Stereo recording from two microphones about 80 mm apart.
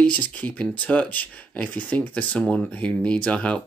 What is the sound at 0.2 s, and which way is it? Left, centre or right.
Speech, centre.